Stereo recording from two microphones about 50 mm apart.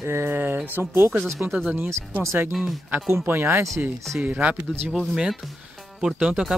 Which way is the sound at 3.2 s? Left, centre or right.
Right.